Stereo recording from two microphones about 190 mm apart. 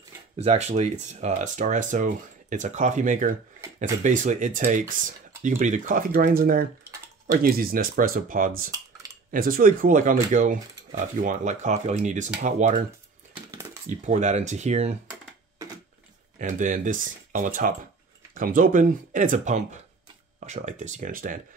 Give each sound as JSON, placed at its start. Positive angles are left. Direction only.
{"t": 0.4, "sound": "speech", "side_deg": -35}
{"t": 13.8, "sound": "speech", "side_deg": -40}
{"t": 16.3, "sound": "speech", "side_deg": -40}